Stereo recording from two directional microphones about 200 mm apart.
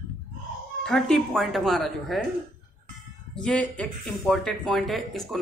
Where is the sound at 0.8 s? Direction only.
5° left (ahead or behind).